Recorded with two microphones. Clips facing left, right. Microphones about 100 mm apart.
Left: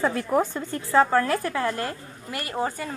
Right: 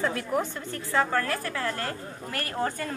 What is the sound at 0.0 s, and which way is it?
Speech, 45° left (ahead or behind).